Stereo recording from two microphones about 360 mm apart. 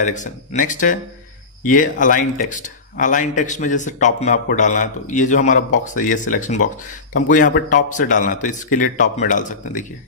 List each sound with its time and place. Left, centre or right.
0.0 s speech: centre